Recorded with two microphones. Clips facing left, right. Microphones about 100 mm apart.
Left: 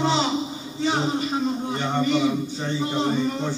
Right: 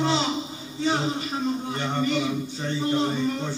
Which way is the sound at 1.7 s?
20° left (ahead or behind).